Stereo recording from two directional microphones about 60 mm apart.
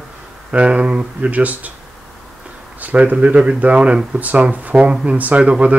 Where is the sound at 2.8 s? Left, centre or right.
Right.